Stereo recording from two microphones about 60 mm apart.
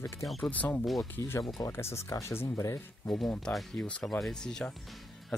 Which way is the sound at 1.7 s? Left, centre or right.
Left.